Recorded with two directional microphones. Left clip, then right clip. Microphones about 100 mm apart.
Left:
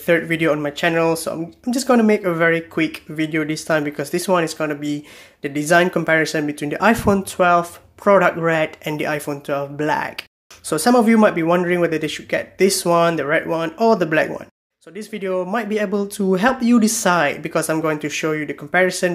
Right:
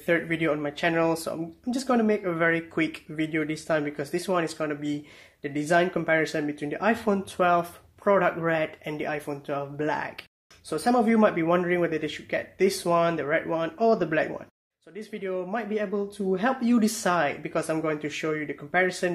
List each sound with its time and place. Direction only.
0.0 s speech: 20° left (ahead or behind)
1.8 s speech: 35° left (ahead or behind)
2.3 s speech: 20° left (ahead or behind)
7.3 s speech: 15° left (ahead or behind)
8.0 s speech: 25° left (ahead or behind)
9.5 s speech: 20° left (ahead or behind)
10.7 s speech: 40° left (ahead or behind)
11.1 s speech: 20° left (ahead or behind); by 16.4 s 45° left (ahead or behind)
16.5 s speech: 15° left (ahead or behind)